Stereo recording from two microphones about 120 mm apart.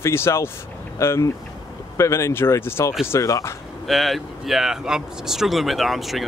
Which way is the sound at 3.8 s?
Centre (ahead or behind).